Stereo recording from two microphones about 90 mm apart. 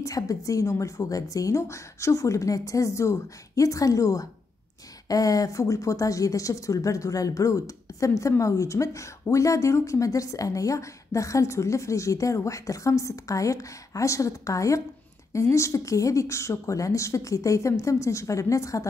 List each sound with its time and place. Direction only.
0.0 s speech: 40° left (ahead or behind)